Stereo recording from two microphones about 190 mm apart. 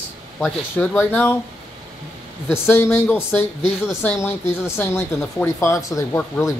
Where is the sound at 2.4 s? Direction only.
10° left (ahead or behind).